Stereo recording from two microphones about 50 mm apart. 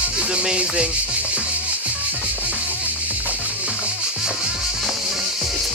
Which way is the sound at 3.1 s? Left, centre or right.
Right.